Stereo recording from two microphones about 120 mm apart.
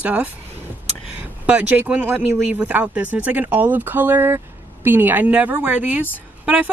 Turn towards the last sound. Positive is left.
turn(degrees=-10)  # may be behind; listen again after turning